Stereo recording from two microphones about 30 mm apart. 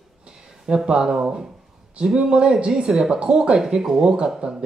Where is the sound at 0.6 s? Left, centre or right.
Right.